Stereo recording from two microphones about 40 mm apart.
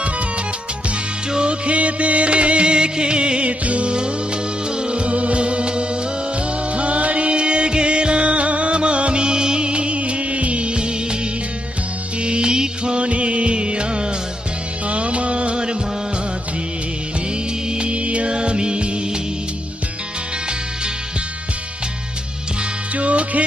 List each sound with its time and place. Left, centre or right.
1.3 s music: right
12.2 s music: right
14.9 s music of bollywood: right
17.6 s music: right
22.9 s music: right